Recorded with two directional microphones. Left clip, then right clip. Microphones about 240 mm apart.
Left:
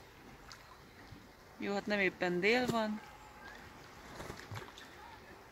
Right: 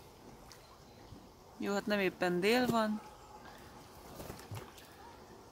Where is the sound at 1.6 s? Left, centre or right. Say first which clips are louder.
Even; centre.